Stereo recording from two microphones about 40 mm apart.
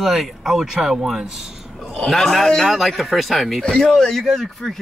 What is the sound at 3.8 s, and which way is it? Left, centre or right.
Speech, centre.